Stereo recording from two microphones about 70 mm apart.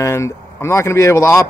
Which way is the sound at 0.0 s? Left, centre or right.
Left.